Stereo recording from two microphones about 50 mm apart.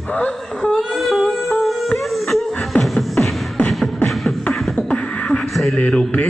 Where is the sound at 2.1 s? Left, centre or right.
Centre.